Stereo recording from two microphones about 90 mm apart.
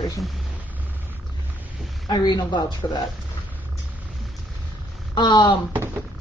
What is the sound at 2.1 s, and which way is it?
Speech, 55° left (ahead or behind).